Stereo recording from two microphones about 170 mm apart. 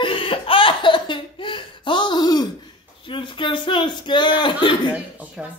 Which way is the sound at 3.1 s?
30° left (ahead or behind).